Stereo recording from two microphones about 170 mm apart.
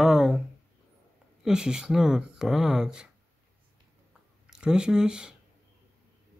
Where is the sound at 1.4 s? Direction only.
5° right (ahead or behind).